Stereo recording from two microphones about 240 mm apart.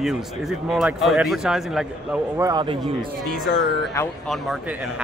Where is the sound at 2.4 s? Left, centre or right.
Centre.